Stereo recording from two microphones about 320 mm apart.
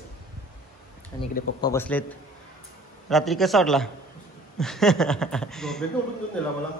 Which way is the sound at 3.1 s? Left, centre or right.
Centre.